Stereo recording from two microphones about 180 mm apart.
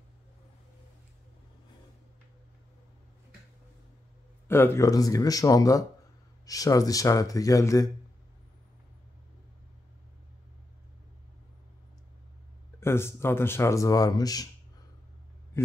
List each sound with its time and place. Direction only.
4.5 s speech: 15° left (ahead or behind)
12.8 s speech: 15° left (ahead or behind)
15.5 s a man's voice: 15° left (ahead or behind)